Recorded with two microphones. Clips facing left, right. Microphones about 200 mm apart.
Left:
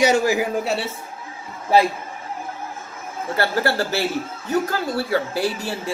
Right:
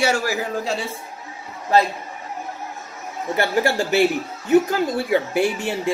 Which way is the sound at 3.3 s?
15° right (ahead or behind).